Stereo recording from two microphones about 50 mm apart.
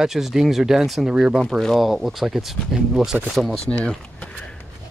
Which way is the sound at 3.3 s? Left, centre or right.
Centre.